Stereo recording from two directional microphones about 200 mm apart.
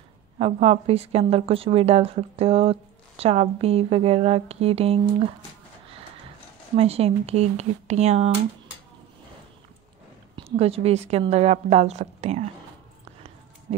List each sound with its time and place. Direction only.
0.4 s a woman's voice: 30° right (ahead or behind)
6.8 s a woman's voice: 30° right (ahead or behind)
10.3 s a woman's voice: 30° right (ahead or behind)